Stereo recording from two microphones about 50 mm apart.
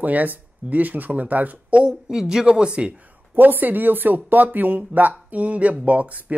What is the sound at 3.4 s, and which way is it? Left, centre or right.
Speech, right.